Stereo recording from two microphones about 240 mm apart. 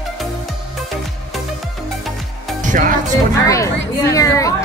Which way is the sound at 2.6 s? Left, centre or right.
Right.